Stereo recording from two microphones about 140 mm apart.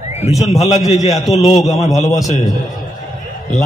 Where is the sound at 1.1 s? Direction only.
Centre (ahead or behind).